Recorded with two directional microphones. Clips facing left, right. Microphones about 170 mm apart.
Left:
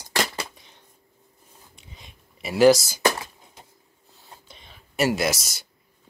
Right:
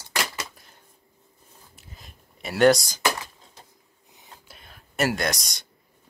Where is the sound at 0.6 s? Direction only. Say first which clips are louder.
Left 1 dB; 5° right (ahead or behind).